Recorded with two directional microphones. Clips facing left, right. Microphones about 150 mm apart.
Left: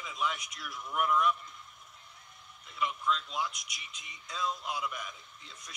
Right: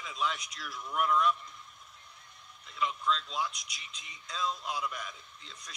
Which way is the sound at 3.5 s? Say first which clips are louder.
Even; 60° left (ahead or behind).